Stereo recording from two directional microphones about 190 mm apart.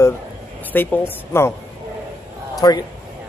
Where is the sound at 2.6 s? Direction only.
20° left (ahead or behind).